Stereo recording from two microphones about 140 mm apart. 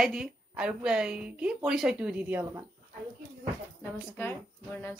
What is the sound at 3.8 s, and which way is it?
A woman's voice, 15° left (ahead or behind).